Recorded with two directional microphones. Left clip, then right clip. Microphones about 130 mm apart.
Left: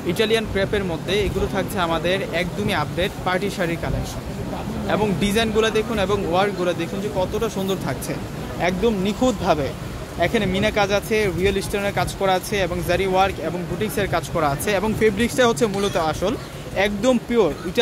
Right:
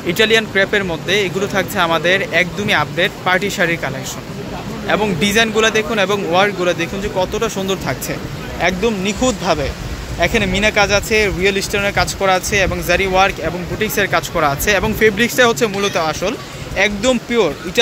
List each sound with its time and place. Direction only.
0.0 s speech: centre (ahead or behind); by 17.5 s 20° left (ahead or behind)